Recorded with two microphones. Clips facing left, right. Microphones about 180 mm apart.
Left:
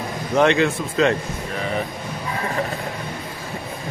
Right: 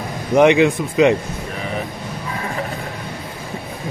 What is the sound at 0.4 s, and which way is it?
Speech, 15° right (ahead or behind).